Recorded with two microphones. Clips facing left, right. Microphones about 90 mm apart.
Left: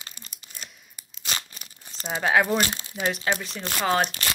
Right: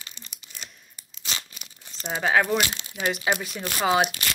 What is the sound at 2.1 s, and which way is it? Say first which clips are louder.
Speech: even; centre (ahead or behind).